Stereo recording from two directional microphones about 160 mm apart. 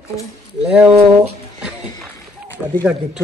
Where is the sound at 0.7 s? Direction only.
5° right (ahead or behind).